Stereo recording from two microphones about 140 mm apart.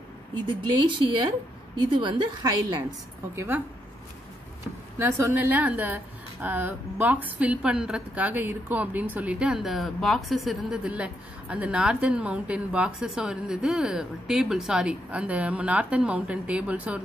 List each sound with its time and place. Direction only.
0.5 s a woman's voice: 35° right (ahead or behind)
3.3 s a woman's voice: 15° right (ahead or behind)
4.9 s a woman's voice: 20° right (ahead or behind)